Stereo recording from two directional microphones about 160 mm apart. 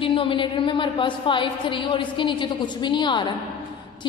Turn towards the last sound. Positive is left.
turn(degrees=30)  # may be behind; listen again after turning